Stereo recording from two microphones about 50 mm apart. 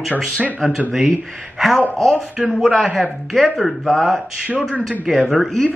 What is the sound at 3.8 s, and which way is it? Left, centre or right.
Speech, centre.